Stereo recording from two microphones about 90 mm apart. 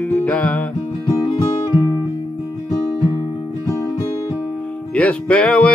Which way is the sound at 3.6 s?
30° left (ahead or behind).